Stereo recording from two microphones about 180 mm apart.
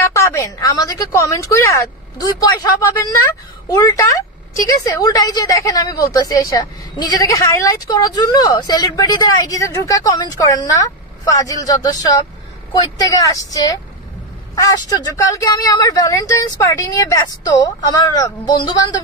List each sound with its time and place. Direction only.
0.1 s a woman's voice: 15° left (ahead or behind)